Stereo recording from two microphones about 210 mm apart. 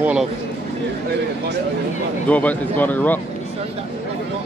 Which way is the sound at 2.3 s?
5° left (ahead or behind).